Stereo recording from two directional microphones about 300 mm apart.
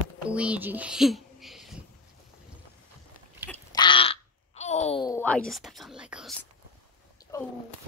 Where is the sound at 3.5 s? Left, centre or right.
Centre.